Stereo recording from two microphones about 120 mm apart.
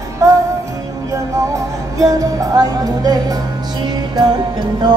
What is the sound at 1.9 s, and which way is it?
Music, 30° right (ahead or behind).